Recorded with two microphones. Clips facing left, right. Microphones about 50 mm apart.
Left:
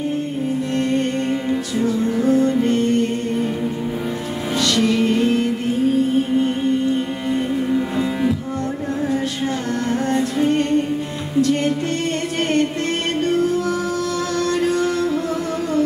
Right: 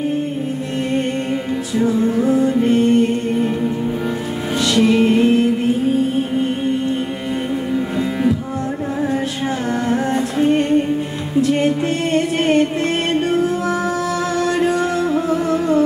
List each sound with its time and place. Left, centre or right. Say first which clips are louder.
1.8 s music: right 5 dB; centre
4.7 s music: right 5 dB; centre
7.7 s music: even; centre
9.8 s music: even; centre
14.4 s music: right 1 dB; centre